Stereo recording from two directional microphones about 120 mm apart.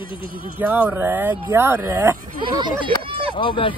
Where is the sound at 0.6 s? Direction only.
15° right (ahead or behind).